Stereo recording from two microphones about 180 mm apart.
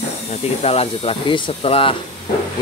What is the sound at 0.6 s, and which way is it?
Speech, 35° left (ahead or behind).